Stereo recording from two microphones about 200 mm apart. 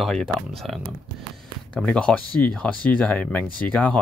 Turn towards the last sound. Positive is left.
turn(degrees=5)  # may be behind; listen again after turning